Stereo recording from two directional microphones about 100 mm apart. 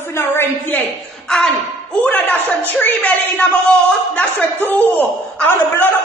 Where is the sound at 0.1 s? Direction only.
25° left (ahead or behind).